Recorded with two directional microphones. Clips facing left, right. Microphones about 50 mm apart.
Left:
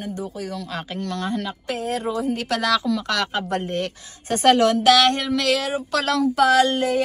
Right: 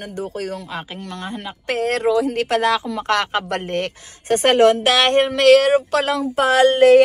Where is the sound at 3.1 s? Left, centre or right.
Right.